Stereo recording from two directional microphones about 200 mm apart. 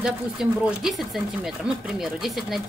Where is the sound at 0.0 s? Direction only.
5° right (ahead or behind).